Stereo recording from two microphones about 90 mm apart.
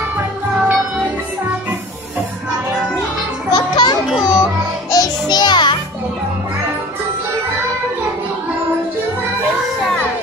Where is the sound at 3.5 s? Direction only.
55° left (ahead or behind).